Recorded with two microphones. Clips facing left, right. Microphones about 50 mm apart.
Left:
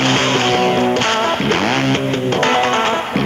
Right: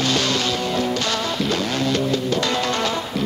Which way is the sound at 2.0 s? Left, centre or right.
Left.